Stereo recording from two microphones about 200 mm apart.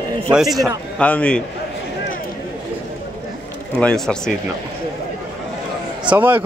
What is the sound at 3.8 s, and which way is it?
Speech, 5° left (ahead or behind).